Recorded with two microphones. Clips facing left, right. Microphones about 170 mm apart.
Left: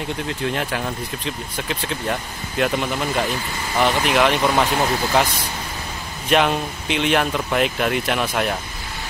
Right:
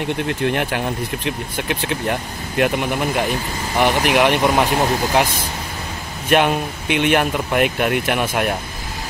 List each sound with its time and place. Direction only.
0.3 s speech: 60° right (ahead or behind)
2.6 s speech: 10° right (ahead or behind)
6.3 s speech: 10° right (ahead or behind)
6.9 s speech: 55° right (ahead or behind)
7.2 s speech: 10° right (ahead or behind)